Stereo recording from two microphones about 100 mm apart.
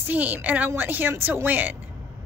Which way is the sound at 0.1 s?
20° right (ahead or behind).